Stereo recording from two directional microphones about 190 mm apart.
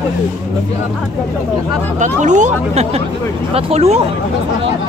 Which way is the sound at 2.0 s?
40° right (ahead or behind).